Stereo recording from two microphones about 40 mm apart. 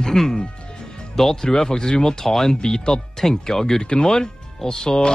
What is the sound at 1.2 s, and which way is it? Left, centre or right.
Speech, centre.